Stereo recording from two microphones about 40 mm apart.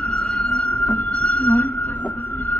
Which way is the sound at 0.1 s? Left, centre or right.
Left.